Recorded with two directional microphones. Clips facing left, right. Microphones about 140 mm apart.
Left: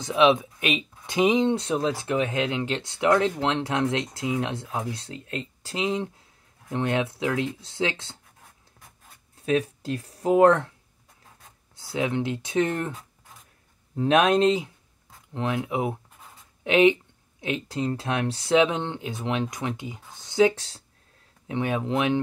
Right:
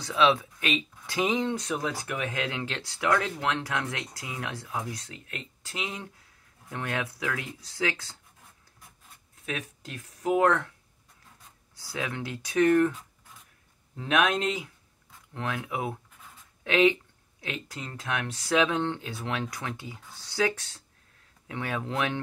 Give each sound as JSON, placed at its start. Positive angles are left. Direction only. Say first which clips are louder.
{"t": 0.0, "sound": "speech", "louder": "left 4 dB", "side_deg": 20}
{"t": 9.5, "sound": "speech", "louder": "left 12 dB", "side_deg": 30}
{"t": 11.7, "sound": "speech", "louder": "left 8 dB", "side_deg": 25}
{"t": 13.9, "sound": "speech", "louder": "left 6 dB", "side_deg": 30}